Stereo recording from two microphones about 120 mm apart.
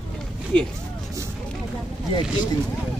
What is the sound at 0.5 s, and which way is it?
Speech, 10° left (ahead or behind).